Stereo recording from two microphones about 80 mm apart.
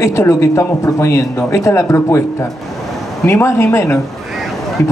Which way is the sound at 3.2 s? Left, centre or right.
Left.